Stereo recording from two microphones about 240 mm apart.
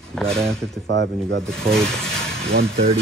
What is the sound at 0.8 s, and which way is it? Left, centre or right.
Speech, right.